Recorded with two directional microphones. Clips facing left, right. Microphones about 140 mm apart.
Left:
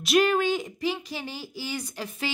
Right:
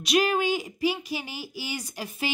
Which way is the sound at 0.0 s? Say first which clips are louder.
Left 2 dB; centre (ahead or behind).